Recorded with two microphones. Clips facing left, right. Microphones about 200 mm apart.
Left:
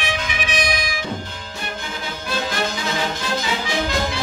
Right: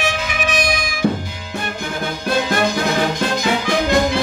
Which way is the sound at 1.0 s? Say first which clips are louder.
Right 9 dB; 60° right (ahead or behind).